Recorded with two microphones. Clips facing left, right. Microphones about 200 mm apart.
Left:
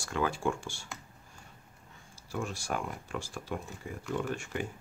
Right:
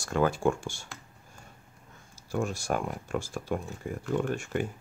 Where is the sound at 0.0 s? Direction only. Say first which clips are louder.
Right 5 dB; 45° right (ahead or behind).